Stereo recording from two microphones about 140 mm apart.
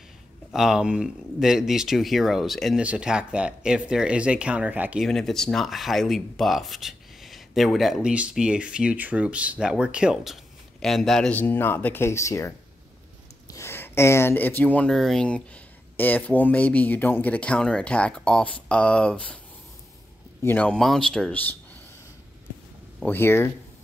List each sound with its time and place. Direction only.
0.5 s speech: 5° right (ahead or behind)
5.0 s speech: centre (ahead or behind)
20.4 s speech: 10° left (ahead or behind)
22.9 s speech: 15° left (ahead or behind)